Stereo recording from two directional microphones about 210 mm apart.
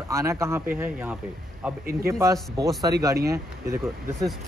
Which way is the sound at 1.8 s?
45° right (ahead or behind).